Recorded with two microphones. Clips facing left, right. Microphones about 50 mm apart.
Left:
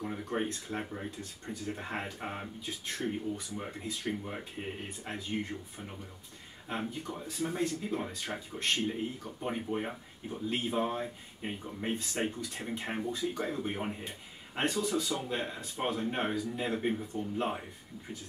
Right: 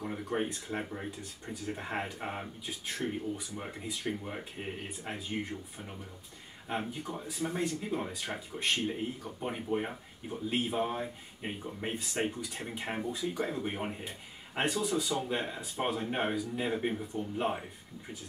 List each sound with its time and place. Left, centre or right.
0.0 s speech: centre
6.7 s speech: centre